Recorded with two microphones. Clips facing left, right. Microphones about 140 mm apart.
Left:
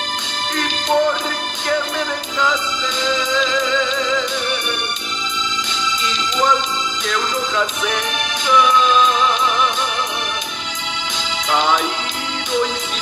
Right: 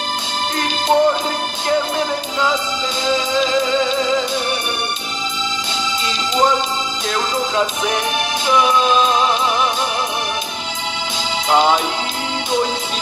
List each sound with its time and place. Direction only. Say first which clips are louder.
0.6 s music: right 2 dB; 30° right (ahead or behind)
7.1 s music: right 2 dB; 30° right (ahead or behind)
11.5 s music: right 3 dB; 35° right (ahead or behind)